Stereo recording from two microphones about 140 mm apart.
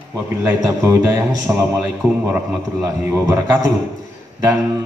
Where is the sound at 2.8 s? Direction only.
25° right (ahead or behind).